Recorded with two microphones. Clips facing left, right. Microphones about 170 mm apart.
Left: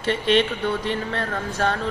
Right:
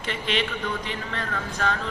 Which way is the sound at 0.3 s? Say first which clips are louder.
Left 7 dB; 40° left (ahead or behind).